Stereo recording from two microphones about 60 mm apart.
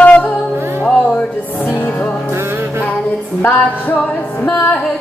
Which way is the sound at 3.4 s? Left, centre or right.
Left.